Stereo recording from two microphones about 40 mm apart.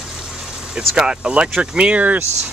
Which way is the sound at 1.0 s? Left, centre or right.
Centre.